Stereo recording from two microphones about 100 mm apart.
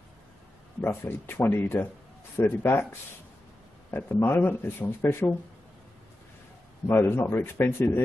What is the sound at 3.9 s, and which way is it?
Speech, 20° left (ahead or behind).